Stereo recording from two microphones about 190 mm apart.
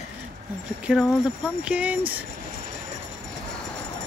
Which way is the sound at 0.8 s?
5° right (ahead or behind).